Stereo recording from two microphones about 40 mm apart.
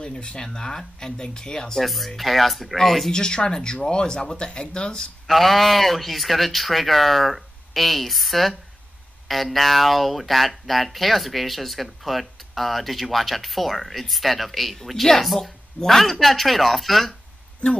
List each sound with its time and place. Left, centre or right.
0.0 s speech: left
1.8 s speech: centre
3.1 s speech: centre
5.2 s speech: centre